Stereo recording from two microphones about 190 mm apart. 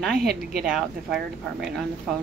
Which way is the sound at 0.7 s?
Centre (ahead or behind).